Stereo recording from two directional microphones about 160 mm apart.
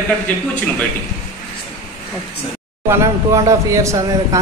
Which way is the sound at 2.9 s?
20° right (ahead or behind).